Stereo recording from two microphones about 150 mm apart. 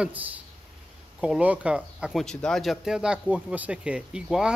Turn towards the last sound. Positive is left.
turn(degrees=-5)  # may be behind; listen again after turning